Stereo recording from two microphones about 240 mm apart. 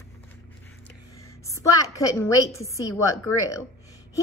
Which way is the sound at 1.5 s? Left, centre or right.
Centre.